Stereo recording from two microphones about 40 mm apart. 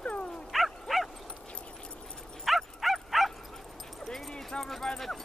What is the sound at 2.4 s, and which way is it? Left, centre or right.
Bow-wow, centre.